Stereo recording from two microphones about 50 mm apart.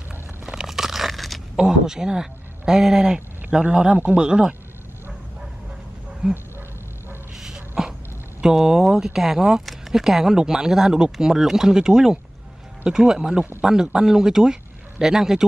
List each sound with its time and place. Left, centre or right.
0.5 s crunch: centre
1.6 s a man's voice: centre
6.2 s speech: centre
7.3 s dog: centre
8.4 s speech: centre